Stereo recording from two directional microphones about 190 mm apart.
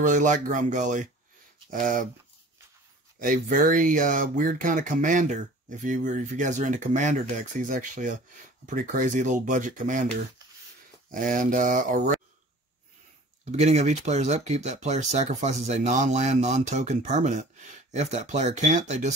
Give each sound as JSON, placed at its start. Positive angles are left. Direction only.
{"t": 0.0, "sound": "speech", "side_deg": -40}
{"t": 3.2, "sound": "speech", "side_deg": -45}
{"t": 11.1, "sound": "speech", "side_deg": -45}
{"t": 13.5, "sound": "speech", "side_deg": -35}